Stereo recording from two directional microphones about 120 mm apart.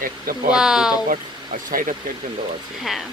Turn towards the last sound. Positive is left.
turn(degrees=0)  # may be behind; listen again after turning